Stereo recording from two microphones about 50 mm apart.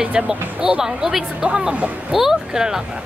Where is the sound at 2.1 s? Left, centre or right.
Centre.